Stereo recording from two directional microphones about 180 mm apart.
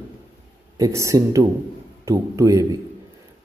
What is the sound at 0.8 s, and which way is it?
Speech, 15° right (ahead or behind).